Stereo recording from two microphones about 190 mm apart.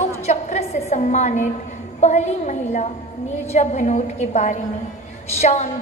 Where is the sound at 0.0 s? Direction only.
35° left (ahead or behind).